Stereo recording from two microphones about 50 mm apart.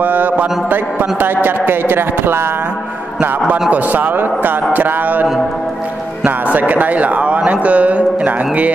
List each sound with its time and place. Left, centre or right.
0.0 s mantra: right
1.2 s a sound: right
3.7 s speech: right
6.2 s a man's voice: right